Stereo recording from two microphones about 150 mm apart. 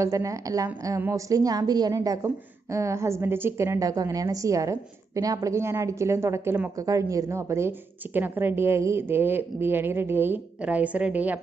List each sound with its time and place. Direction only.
0.0 s a woman's voice: 20° right (ahead or behind)